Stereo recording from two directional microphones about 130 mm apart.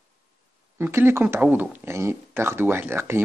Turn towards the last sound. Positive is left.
turn(degrees=-20)  # may be behind; listen again after turning